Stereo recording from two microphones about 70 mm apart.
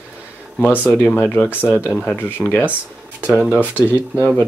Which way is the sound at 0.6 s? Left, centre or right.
Left.